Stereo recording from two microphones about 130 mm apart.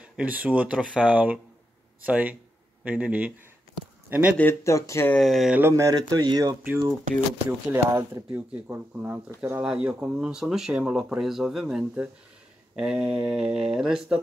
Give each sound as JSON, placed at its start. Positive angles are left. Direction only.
{"t": 0.0, "sound": "speech", "side_deg": -10}
{"t": 4.4, "sound": "speech", "side_deg": 20}
{"t": 5.1, "sound": "mantra", "side_deg": 0}
{"t": 5.5, "sound": "speech", "side_deg": -20}
{"t": 6.6, "sound": "speech", "side_deg": -15}
{"t": 8.4, "sound": "speech", "side_deg": -10}
{"t": 12.7, "sound": "mantra", "side_deg": -5}